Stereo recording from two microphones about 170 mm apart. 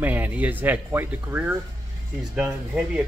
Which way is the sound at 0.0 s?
10° right (ahead or behind).